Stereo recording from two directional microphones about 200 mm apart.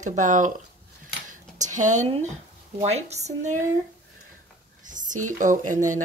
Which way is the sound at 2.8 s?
30° right (ahead or behind).